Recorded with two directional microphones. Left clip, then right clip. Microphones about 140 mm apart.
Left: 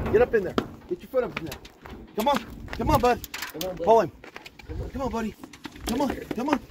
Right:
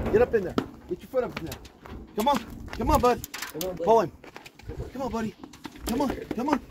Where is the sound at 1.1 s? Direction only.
5° left (ahead or behind).